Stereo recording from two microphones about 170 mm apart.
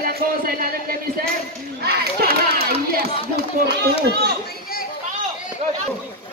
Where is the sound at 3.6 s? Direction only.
60° right (ahead or behind).